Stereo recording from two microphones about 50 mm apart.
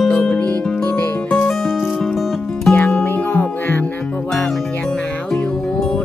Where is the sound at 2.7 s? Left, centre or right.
Left.